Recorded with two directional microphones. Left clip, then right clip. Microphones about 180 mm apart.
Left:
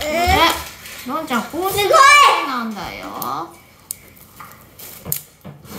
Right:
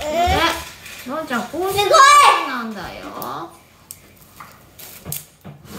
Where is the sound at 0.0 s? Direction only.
20° left (ahead or behind).